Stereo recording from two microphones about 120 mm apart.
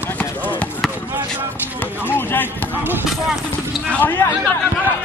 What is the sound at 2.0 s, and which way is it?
Speech, 15° left (ahead or behind).